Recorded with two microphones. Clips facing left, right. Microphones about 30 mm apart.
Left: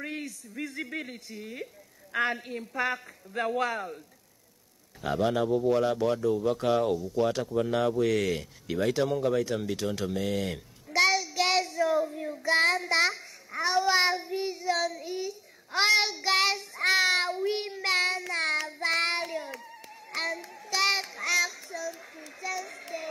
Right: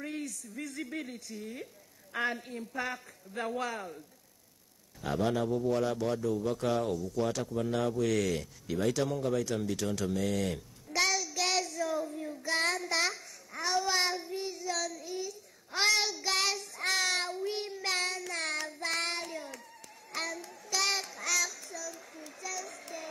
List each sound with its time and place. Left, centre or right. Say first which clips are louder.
0.0 s speech: left 2 dB; left
5.1 s speech: left 4 dB; centre
20.1 s child singing: left 5 dB; left